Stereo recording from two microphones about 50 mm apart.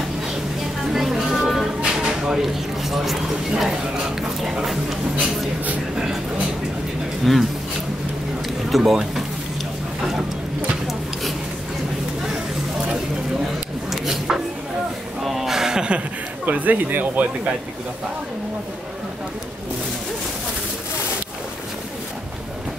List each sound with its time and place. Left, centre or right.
0.9 s music: centre
1.8 s speech: centre
7.3 s speech: centre
8.6 s speech: centre
14.0 s a sound: centre
16.4 s speech: right